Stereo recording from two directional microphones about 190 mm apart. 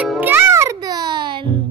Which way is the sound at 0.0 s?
10° right (ahead or behind).